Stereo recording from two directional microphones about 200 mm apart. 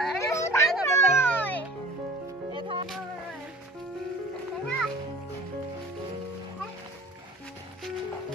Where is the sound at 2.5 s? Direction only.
25° right (ahead or behind).